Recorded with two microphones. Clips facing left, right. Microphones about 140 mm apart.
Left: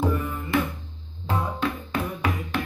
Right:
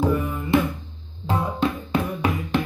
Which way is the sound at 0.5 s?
25° right (ahead or behind).